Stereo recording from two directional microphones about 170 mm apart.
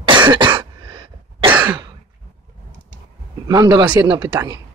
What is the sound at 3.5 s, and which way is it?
Speech, 25° right (ahead or behind).